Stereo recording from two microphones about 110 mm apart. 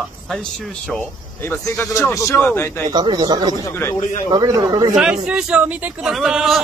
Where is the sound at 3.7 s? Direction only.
20° left (ahead or behind).